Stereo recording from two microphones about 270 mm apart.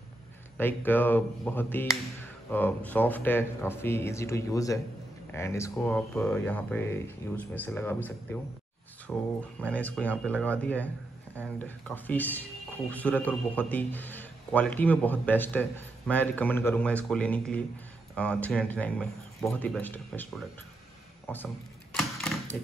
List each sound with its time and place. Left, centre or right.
0.6 s a man's voice: centre